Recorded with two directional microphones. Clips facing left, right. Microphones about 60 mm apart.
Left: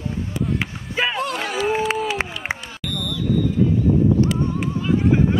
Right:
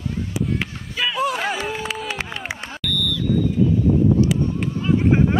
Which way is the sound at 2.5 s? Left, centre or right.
Left.